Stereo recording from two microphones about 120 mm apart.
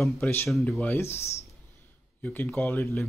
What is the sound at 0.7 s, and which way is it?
Speech, 15° left (ahead or behind).